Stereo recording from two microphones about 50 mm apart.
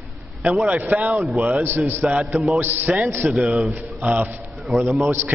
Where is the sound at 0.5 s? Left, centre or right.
Centre.